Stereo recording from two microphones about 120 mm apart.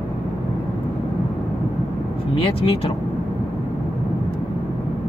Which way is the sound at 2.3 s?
55° left (ahead or behind).